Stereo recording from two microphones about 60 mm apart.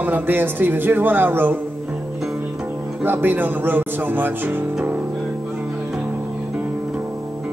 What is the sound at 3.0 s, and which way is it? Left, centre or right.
A man's voice, right.